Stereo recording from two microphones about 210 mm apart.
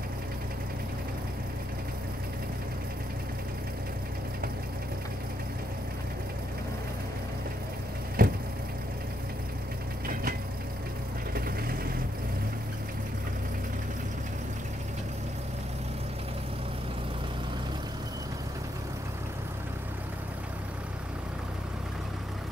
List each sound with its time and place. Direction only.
8.2 s vehicle: 45° right (ahead or behind)